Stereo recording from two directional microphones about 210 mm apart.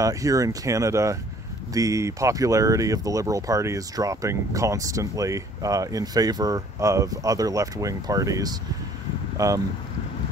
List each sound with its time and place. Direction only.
0.0 s speech: 15° right (ahead or behind)